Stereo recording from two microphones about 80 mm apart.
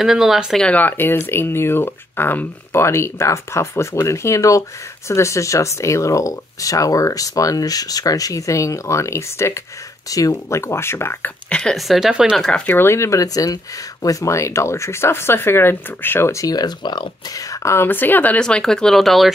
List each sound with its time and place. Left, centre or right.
0.0 s speech: centre
0.6 s speech: centre
11.4 s speech: centre
11.7 s speech: centre
12.6 s speech: left
16.4 s speech: left
17.5 s speech: left
17.8 s speech: left
18.4 s speech: centre